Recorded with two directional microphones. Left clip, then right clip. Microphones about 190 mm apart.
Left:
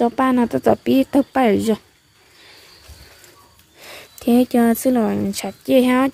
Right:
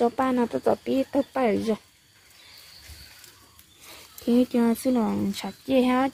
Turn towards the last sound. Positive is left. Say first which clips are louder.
# left 7 dB
turn(degrees=25)  # may be behind; listen again after turning